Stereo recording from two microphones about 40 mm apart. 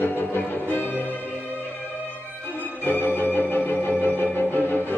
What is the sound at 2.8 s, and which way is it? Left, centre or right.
Music, left.